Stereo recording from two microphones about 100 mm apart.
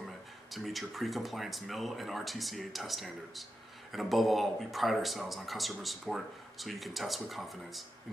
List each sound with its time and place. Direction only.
0.0 s speech: centre (ahead or behind)